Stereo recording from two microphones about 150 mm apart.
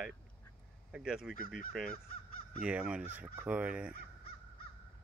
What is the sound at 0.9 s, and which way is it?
Speech, 5° right (ahead or behind).